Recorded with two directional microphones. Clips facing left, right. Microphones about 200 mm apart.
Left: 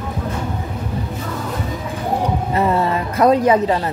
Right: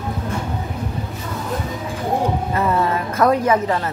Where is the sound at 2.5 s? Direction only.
20° left (ahead or behind).